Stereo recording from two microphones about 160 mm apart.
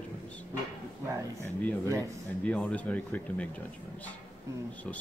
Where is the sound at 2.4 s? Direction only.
10° left (ahead or behind).